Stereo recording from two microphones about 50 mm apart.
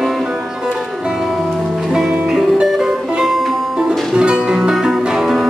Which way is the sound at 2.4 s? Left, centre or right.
Centre.